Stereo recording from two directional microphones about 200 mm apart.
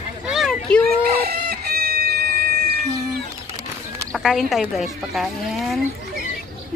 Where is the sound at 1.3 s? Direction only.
50° right (ahead or behind).